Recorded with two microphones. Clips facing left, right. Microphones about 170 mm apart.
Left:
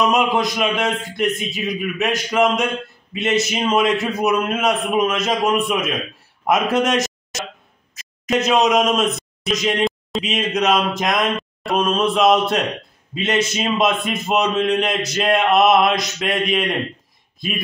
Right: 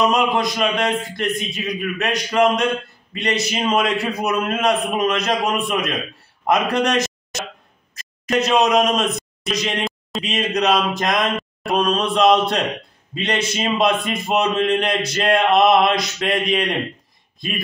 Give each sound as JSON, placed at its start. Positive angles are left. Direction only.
{"t": 0.0, "sound": "a man's voice", "side_deg": 0}